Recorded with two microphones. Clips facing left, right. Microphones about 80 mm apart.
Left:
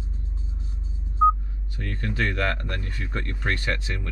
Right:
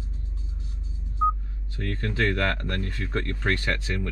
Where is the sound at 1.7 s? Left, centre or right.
Centre.